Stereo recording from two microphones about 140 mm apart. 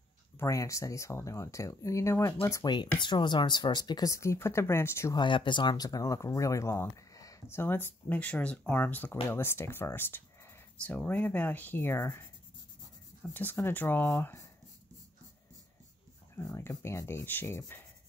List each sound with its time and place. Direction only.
0.4 s speech: 20° left (ahead or behind)
5.2 s speech: 35° left (ahead or behind); by 12.2 s 20° left (ahead or behind)
13.2 s speech: 10° left (ahead or behind)
16.3 s speech: 20° left (ahead or behind)